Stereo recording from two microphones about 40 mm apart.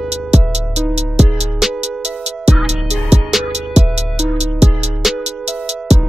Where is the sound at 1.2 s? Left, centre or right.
Centre.